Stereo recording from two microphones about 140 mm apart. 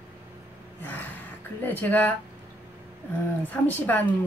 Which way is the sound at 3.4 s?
10° left (ahead or behind).